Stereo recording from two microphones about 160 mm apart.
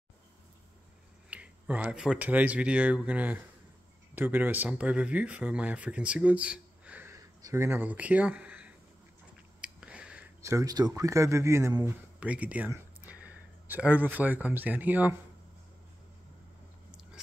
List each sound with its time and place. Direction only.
1.3 s speech: 10° right (ahead or behind)
9.6 s a sound: 5° right (ahead or behind)
10.4 s speech: 20° right (ahead or behind)
12.2 s speech: 10° right (ahead or behind)